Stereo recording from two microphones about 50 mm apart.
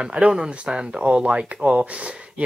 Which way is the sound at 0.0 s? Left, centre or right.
Right.